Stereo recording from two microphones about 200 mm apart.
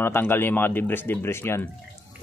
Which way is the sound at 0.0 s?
10° left (ahead or behind).